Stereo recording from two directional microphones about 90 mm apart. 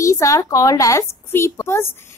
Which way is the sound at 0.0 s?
35° left (ahead or behind).